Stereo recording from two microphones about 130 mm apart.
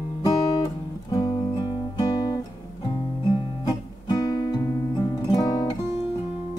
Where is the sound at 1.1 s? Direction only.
35° left (ahead or behind).